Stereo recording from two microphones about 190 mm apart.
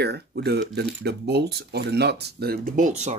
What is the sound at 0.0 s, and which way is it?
Speech, 60° right (ahead or behind).